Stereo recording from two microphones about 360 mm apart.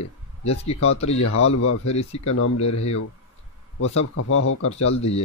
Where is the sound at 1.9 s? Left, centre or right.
Centre.